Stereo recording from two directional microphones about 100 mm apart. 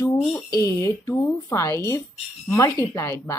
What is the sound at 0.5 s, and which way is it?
A woman's voice, 30° left (ahead or behind).